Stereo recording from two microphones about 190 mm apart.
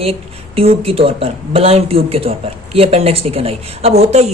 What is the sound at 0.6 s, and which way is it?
Speech, 30° right (ahead or behind).